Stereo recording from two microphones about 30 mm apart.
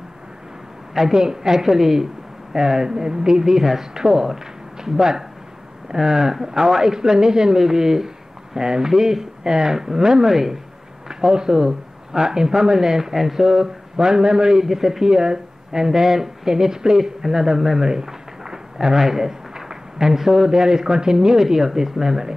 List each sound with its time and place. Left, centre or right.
0.9 s speech: centre
11.1 s speech: right
14.7 s speech: centre